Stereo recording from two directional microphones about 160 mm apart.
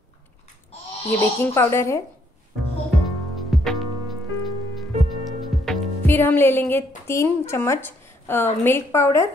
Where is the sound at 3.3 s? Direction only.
Centre (ahead or behind).